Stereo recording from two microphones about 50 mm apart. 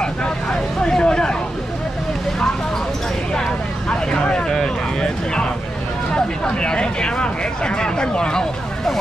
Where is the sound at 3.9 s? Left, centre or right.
Centre.